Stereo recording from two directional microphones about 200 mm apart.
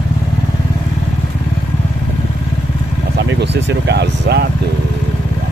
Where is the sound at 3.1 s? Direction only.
60° right (ahead or behind).